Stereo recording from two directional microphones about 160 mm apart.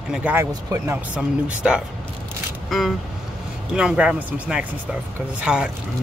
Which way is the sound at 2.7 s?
Centre (ahead or behind).